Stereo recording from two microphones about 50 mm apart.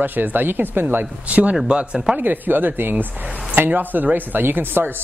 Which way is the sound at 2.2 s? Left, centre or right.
Right.